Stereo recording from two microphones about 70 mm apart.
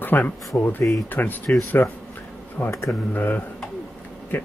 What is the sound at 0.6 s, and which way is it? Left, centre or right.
Speech, left.